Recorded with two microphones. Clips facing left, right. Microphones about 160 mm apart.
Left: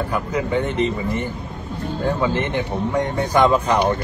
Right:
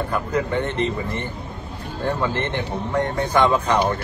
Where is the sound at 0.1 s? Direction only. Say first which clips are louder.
Even; 10° left (ahead or behind).